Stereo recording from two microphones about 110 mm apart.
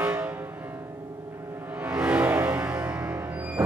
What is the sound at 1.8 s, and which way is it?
Music, 10° right (ahead or behind).